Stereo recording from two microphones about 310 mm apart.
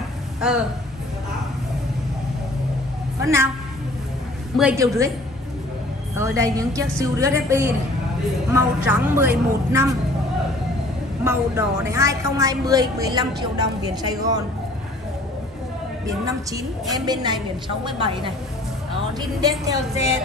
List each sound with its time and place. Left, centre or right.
0.4 s speech: centre
4.6 s a woman's voice: centre
6.1 s a woman's voice: centre
11.2 s a woman's voice: centre
16.9 s a woman's voice: centre
19.6 s a woman's voice: centre